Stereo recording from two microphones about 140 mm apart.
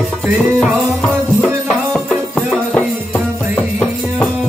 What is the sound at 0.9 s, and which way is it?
Music, centre (ahead or behind).